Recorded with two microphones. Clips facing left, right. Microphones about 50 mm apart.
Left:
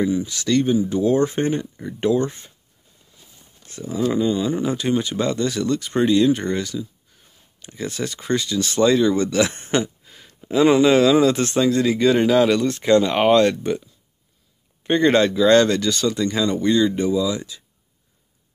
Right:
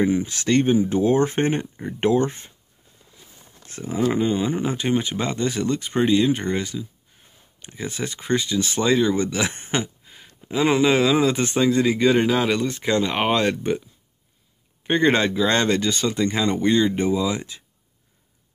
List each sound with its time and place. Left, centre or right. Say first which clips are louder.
0.0 s speech: even; right
3.6 s a sound: even; right
4.1 s speech: left 3 dB; right